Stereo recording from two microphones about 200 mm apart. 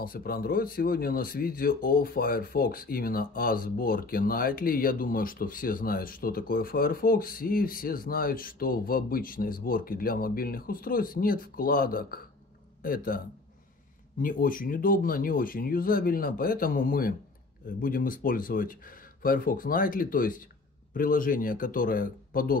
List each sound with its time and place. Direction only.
0.0 s speech: 45° left (ahead or behind)
14.2 s speech: 45° left (ahead or behind)